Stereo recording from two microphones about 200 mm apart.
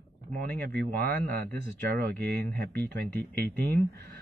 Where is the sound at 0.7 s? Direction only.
50° right (ahead or behind).